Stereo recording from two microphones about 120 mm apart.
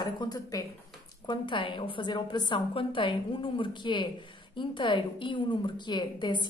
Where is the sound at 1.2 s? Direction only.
40° left (ahead or behind).